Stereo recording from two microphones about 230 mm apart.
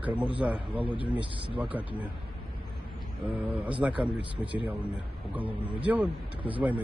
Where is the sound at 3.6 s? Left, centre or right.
Centre.